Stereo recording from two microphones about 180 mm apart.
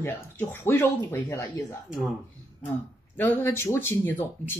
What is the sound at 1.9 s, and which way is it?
Speech, centre (ahead or behind).